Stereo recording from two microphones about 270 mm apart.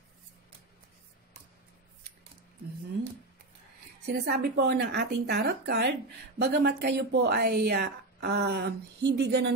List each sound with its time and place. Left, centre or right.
4.3 s speech: right